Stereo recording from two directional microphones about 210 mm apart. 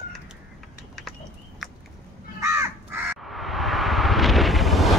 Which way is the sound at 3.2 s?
Centre (ahead or behind).